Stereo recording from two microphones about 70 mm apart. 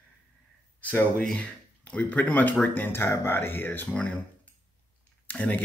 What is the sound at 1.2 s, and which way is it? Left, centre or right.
Speech, centre.